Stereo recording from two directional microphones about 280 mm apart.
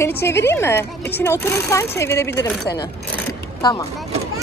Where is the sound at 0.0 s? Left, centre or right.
Centre.